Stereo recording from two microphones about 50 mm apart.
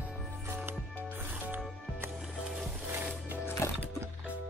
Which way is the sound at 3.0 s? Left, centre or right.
Right.